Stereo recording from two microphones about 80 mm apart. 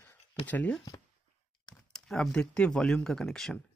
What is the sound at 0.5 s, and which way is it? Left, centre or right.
Speech, centre.